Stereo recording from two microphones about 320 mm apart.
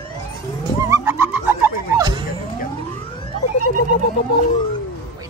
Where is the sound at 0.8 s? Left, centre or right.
Centre.